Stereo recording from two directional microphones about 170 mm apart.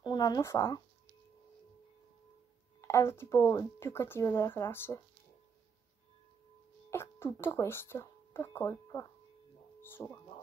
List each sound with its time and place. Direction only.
0.0 s speech: 25° left (ahead or behind)
2.8 s speech: 15° left (ahead or behind)
6.9 s speech: 15° left (ahead or behind)